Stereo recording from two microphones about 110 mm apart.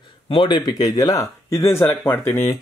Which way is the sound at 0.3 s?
45° left (ahead or behind).